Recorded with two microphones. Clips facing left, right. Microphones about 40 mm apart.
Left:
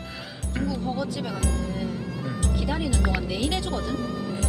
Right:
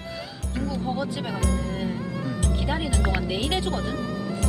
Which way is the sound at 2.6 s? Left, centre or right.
Centre.